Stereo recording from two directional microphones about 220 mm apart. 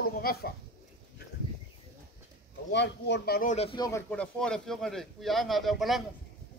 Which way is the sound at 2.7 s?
50° left (ahead or behind).